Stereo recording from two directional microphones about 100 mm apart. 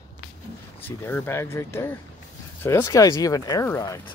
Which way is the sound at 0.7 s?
20° left (ahead or behind).